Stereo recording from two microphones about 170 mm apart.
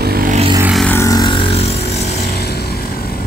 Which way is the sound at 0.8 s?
15° left (ahead or behind).